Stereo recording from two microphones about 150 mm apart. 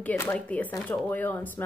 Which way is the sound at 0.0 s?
10° left (ahead or behind).